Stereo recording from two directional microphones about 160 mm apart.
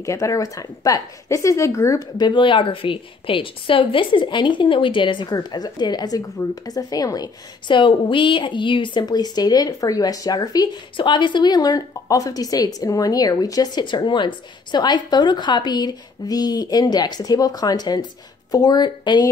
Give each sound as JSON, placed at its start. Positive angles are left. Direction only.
{"t": 0.0, "sound": "a woman's voice", "side_deg": 20}